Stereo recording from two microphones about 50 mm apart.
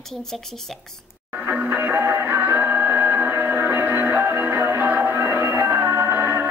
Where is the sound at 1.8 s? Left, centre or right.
Right.